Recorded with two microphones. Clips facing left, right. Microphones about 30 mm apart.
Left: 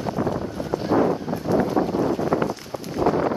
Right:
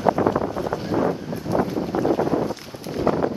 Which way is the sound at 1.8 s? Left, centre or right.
Centre.